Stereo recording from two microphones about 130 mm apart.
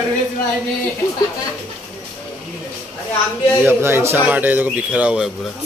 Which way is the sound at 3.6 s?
20° right (ahead or behind).